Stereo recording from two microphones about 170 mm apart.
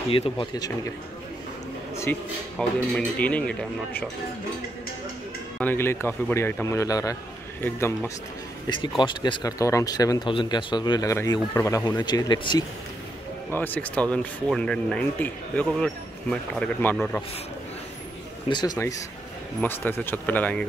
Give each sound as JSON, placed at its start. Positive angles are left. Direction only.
{"t": 0.1, "sound": "speech", "side_deg": 30}
{"t": 2.1, "sound": "speech", "side_deg": 10}
{"t": 5.6, "sound": "speech", "side_deg": 10}
{"t": 9.0, "sound": "speech", "side_deg": 25}
{"t": 13.5, "sound": "speech", "side_deg": 10}
{"t": 18.5, "sound": "speech", "side_deg": 25}